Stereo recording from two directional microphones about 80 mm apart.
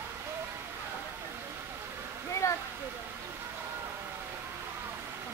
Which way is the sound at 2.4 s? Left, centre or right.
Left.